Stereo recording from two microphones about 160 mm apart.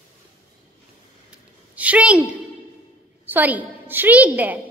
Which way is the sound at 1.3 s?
10° right (ahead or behind).